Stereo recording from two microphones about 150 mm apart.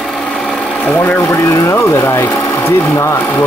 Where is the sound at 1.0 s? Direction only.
20° left (ahead or behind).